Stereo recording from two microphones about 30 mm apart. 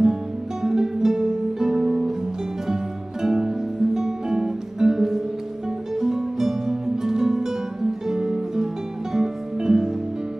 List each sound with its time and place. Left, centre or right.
0.0 s music: centre